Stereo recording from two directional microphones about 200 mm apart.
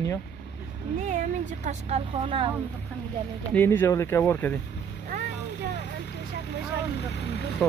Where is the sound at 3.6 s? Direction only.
10° left (ahead or behind).